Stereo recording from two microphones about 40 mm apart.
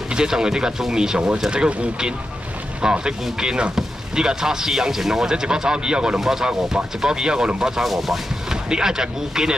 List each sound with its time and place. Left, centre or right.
0.1 s speech: centre
7.8 s speech: centre
8.5 s speech: centre